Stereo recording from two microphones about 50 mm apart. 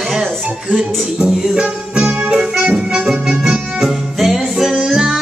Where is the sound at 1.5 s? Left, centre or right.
Centre.